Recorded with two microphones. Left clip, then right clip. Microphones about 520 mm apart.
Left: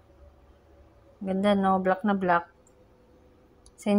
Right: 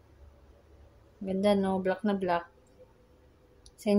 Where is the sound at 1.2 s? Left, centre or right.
Right.